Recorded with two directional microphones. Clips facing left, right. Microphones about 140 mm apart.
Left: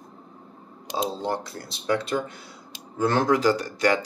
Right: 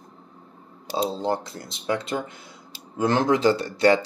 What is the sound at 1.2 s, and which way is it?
Speech, 25° right (ahead or behind).